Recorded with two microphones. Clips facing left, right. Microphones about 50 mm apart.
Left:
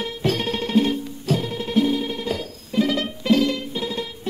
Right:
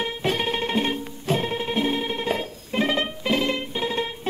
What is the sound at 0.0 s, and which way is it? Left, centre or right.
Music, right.